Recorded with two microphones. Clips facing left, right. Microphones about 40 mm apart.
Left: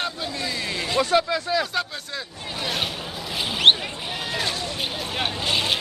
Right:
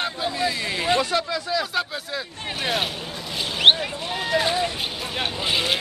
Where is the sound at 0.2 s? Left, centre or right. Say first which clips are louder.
Right 4 dB; centre.